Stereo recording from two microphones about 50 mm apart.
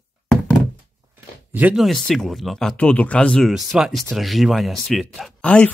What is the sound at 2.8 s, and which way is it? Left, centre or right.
Speech, left.